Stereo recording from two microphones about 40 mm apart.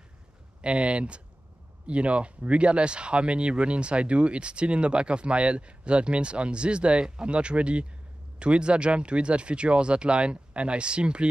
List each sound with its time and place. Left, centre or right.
0.6 s speech: right